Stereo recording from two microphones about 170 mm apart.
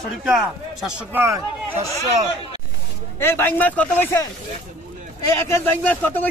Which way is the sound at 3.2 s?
15° left (ahead or behind).